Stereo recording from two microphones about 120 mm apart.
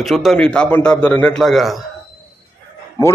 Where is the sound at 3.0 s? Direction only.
25° left (ahead or behind).